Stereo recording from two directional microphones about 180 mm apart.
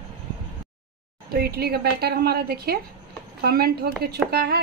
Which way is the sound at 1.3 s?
60° right (ahead or behind).